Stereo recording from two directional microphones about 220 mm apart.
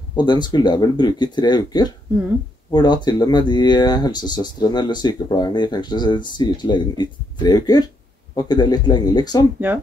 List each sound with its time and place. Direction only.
0.1 s speech: 20° left (ahead or behind)